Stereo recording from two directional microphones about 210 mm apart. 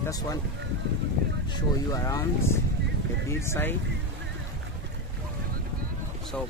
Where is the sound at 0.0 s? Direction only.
15° left (ahead or behind).